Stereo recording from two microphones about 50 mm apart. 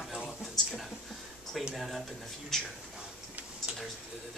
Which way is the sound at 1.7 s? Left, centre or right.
Centre.